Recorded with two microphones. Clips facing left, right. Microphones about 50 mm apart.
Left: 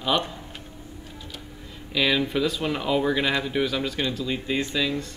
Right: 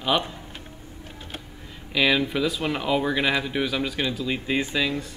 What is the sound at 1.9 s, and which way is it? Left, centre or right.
Speech, centre.